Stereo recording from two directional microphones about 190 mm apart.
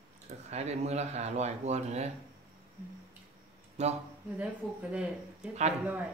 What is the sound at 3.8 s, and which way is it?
Speech, 35° right (ahead or behind).